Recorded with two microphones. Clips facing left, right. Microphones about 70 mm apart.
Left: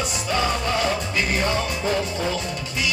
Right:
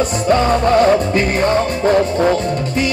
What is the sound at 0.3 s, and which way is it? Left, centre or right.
Music, right.